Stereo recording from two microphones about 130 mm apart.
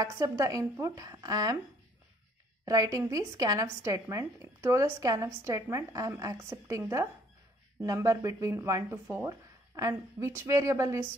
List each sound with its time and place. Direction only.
0.0 s a woman's voice: 25° right (ahead or behind)
2.6 s a woman's voice: 25° right (ahead or behind)